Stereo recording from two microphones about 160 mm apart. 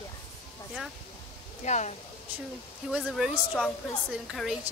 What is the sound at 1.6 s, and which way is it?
Speech, 45° left (ahead or behind).